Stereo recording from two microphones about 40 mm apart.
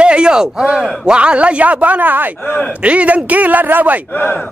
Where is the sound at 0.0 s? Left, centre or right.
Right.